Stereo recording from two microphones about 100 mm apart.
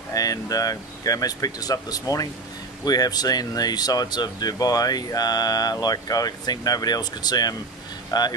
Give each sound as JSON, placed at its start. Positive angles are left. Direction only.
{"t": 0.1, "sound": "speech", "side_deg": 35}